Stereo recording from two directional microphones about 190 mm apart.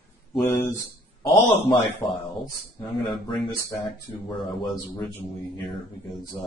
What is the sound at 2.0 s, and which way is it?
Speech, 15° left (ahead or behind).